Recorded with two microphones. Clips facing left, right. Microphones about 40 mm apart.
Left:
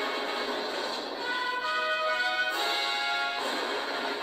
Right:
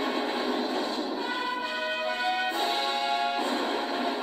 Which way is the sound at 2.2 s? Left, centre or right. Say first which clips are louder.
Right 1 dB; centre.